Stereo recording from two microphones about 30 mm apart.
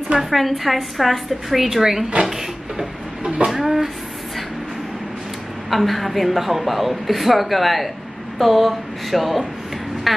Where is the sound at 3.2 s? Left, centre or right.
Right.